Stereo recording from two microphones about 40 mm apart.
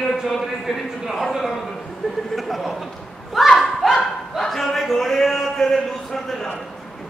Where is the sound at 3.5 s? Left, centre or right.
Centre.